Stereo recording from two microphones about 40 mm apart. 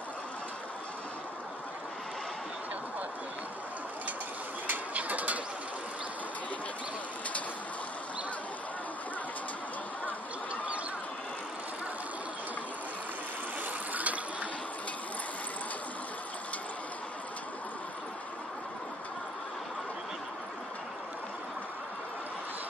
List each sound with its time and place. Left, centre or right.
4.9 s mechanisms: right
10.5 s a sound: right
13.9 s water: right